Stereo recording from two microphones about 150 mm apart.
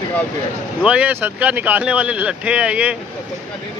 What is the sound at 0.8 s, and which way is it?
Speech, 10° right (ahead or behind).